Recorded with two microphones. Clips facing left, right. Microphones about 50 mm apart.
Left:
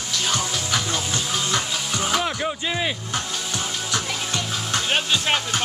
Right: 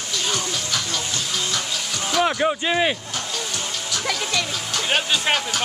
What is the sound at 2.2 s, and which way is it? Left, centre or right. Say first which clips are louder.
Speech: right 5 dB; centre.